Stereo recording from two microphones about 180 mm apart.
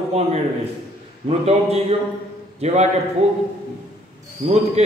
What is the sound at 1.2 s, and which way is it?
A man's voice, 35° right (ahead or behind).